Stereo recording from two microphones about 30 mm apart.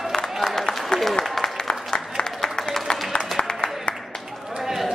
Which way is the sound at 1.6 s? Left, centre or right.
Left.